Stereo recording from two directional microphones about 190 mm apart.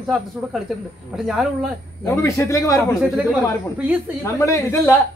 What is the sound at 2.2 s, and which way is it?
Speech, 15° left (ahead or behind).